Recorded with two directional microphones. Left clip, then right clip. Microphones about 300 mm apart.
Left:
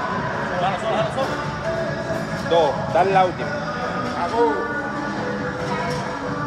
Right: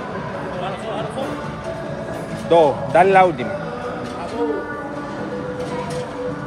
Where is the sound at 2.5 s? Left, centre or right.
Right.